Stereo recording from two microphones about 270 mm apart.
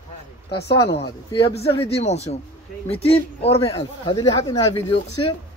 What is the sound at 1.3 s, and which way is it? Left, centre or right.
Speech, left.